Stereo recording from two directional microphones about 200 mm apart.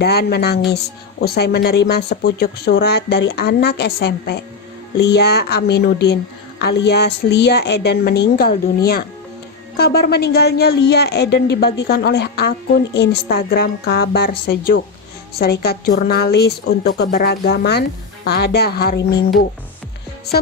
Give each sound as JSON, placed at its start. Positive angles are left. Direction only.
{"t": 0.0, "sound": "speech", "side_deg": 55}